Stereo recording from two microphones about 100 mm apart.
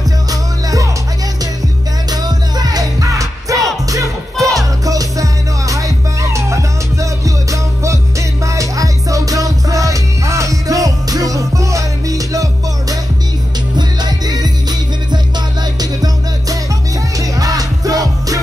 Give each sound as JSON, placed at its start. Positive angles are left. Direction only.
{"t": 0.3, "sound": "music", "side_deg": -35}
{"t": 2.0, "sound": "music", "side_deg": -40}